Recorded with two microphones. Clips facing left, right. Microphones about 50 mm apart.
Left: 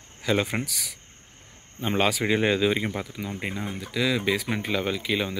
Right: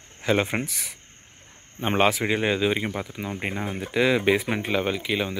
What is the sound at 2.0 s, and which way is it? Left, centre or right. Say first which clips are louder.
Speech: right 1 dB; centre.